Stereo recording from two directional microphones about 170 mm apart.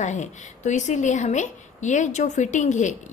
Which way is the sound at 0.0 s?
45° left (ahead or behind).